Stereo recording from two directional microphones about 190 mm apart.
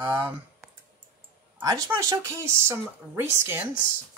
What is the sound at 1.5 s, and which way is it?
Speech, 15° right (ahead or behind).